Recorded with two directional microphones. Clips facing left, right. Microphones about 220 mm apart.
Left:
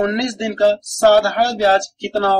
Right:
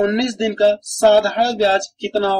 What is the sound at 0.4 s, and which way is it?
Speech, 20° right (ahead or behind).